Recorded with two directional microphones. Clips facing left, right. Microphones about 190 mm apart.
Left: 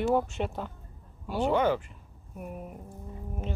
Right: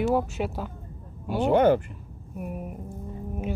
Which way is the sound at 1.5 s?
55° right (ahead or behind).